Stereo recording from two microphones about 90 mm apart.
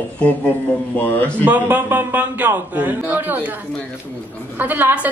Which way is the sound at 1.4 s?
20° right (ahead or behind).